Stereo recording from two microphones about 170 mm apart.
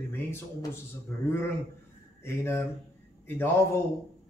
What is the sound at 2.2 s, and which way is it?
A man's voice, 15° left (ahead or behind).